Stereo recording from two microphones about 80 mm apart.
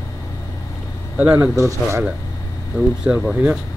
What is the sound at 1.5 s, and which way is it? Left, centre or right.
Speech, right.